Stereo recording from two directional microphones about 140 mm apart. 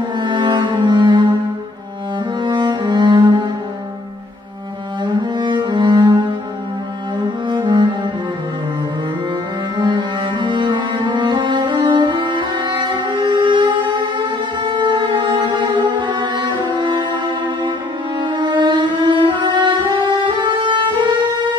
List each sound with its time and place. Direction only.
0.2 s cello: 35° right (ahead or behind)
2.4 s cello: 35° right (ahead or behind)
5.0 s music: 35° right (ahead or behind)
9.8 s music: 35° right (ahead or behind)
18.2 s music: 35° right (ahead or behind)